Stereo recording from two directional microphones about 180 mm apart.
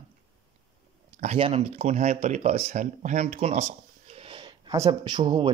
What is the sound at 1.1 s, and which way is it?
Speech, 40° right (ahead or behind).